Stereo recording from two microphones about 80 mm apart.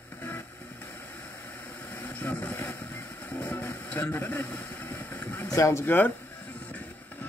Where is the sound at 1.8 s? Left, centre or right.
Left.